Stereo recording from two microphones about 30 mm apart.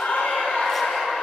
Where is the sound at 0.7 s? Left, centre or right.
Centre.